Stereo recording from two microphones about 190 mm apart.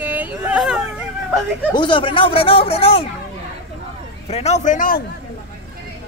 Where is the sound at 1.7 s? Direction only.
25° left (ahead or behind).